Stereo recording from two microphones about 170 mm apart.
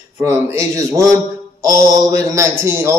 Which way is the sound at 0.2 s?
15° right (ahead or behind).